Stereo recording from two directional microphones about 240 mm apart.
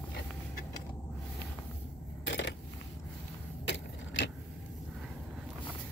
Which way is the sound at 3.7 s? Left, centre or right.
Left.